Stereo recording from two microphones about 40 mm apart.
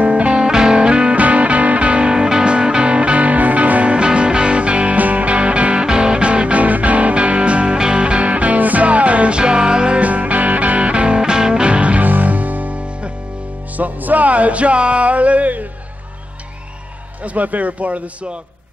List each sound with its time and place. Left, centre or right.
0.0 s music: right
1.1 s music: right
3.9 s music: right
4.9 s music: right
10.0 s music: right
12.1 s music: right
13.7 s music: right
17.2 s speech: right